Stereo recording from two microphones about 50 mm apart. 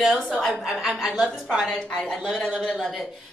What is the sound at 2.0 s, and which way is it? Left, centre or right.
Speech, centre.